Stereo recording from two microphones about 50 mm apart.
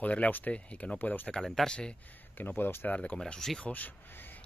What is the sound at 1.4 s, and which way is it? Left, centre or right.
Speech, centre.